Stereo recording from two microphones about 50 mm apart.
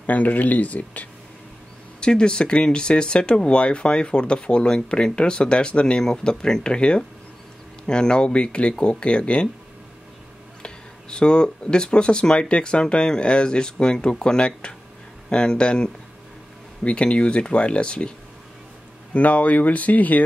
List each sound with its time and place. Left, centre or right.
0.0 s speech: left
2.0 s speech: centre
10.6 s speech: centre
19.1 s speech: left